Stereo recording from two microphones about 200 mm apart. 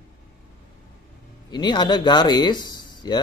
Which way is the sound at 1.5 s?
20° left (ahead or behind).